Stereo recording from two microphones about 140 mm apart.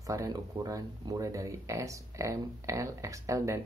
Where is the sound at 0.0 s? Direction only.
25° right (ahead or behind).